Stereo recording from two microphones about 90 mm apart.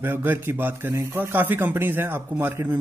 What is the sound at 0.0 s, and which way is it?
A man's voice, 25° right (ahead or behind).